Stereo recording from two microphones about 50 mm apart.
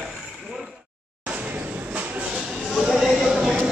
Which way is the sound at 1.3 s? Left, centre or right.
Right.